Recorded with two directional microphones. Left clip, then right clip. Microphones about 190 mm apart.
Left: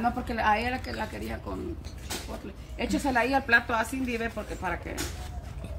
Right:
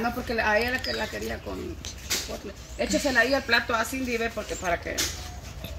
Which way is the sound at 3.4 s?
15° left (ahead or behind).